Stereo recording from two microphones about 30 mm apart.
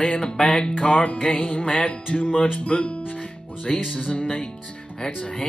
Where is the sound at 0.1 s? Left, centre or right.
Left.